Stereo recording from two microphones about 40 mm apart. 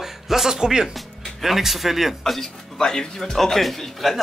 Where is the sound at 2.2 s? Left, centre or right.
Centre.